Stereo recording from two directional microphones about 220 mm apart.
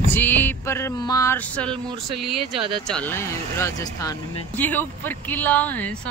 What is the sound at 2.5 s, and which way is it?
Speech, 20° right (ahead or behind).